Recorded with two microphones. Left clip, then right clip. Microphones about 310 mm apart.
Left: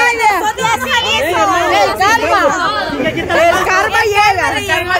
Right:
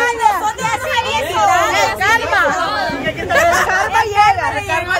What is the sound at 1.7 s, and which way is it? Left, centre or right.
Hubbub, left.